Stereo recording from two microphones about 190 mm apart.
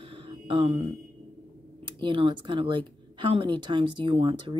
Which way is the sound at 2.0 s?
25° right (ahead or behind).